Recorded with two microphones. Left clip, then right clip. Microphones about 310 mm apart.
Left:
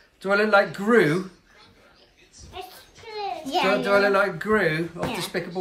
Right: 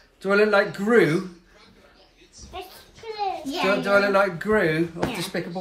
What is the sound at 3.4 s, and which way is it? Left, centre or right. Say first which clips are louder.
Speech: left 3 dB; left.